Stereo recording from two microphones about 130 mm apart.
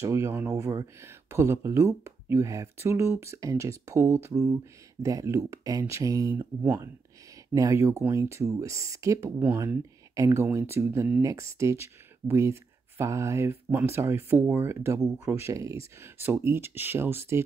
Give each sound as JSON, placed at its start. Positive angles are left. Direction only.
{"t": 0.0, "sound": "speech", "side_deg": -20}